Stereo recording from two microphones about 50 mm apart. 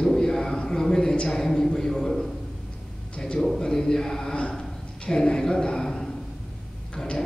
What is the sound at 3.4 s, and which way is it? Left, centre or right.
A man's voice, centre.